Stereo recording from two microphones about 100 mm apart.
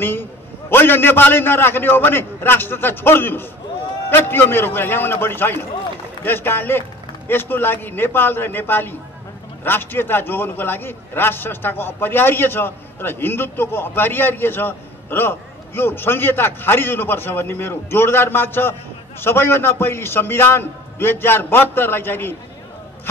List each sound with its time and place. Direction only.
0.0 s a man's voice: 20° left (ahead or behind)